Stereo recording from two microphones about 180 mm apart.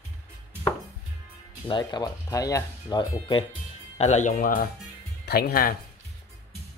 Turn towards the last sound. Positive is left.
turn(degrees=55)  # may be behind; listen again after turning